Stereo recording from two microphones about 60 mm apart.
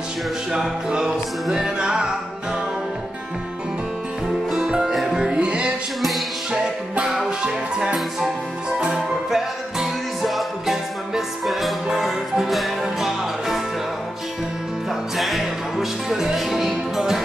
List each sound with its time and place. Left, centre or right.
0.5 s music: centre
4.5 s music: centre
6.0 s music: centre
6.6 s music: centre
14.9 s music: centre